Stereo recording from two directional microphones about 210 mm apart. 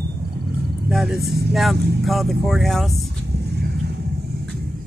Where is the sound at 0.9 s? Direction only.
Centre (ahead or behind).